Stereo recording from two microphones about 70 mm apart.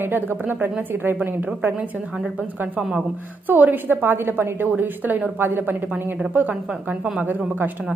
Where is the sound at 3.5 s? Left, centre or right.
Right.